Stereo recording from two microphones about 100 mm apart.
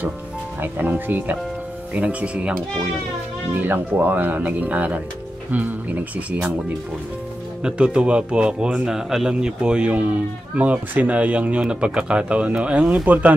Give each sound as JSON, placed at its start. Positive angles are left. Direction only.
{"t": 0.6, "sound": "speech", "side_deg": -20}
{"t": 7.6, "sound": "speech", "side_deg": -10}